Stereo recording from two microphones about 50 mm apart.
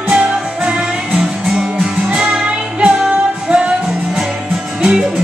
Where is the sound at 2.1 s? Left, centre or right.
Centre.